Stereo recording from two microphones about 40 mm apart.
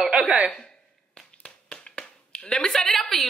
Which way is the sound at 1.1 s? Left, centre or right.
Left.